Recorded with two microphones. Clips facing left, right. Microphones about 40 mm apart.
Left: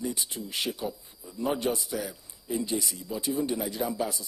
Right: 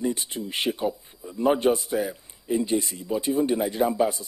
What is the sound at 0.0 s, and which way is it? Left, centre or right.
Speech, right.